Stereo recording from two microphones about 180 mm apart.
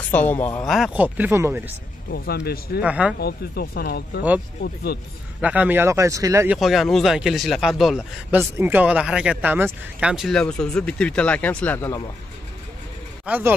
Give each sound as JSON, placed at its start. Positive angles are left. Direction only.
{"t": 0.3, "sound": "speech", "side_deg": 10}
{"t": 0.7, "sound": "speech", "side_deg": 0}
{"t": 2.0, "sound": "speech", "side_deg": 65}
{"t": 2.8, "sound": "speech", "side_deg": -5}
{"t": 3.2, "sound": "speech", "side_deg": 60}
{"t": 5.4, "sound": "speech", "side_deg": -10}
{"t": 6.6, "sound": "speech", "side_deg": 0}
{"t": 8.4, "sound": "speech", "side_deg": -10}
{"t": 13.2, "sound": "speech", "side_deg": -10}